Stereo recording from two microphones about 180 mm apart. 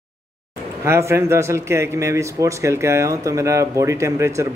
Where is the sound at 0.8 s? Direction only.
15° right (ahead or behind).